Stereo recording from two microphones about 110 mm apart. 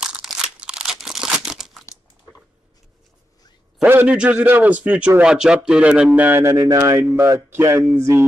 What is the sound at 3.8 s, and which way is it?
Speech, 15° right (ahead or behind).